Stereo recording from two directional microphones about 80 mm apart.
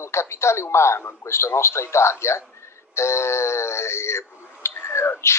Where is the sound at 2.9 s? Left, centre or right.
Left.